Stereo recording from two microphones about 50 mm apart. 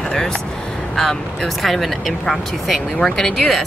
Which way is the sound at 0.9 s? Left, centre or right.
Centre.